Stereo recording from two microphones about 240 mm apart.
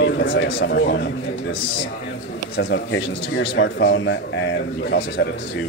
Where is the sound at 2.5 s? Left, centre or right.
Left.